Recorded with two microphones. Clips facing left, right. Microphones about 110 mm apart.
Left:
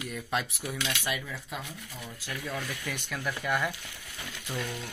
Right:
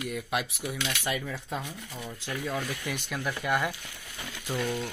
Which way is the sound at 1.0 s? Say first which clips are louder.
Right 3 dB; 25° right (ahead or behind).